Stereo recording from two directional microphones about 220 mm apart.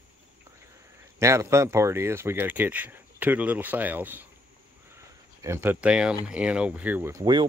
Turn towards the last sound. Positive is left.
turn(degrees=-20)  # may be behind; listen again after turning